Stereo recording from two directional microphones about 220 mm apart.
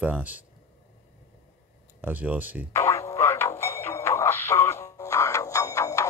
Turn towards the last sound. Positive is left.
turn(degrees=15)  # may be behind; listen again after turning